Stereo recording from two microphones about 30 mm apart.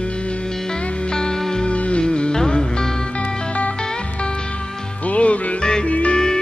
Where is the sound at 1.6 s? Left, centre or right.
Left.